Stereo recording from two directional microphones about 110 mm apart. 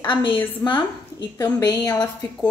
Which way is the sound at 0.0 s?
50° left (ahead or behind).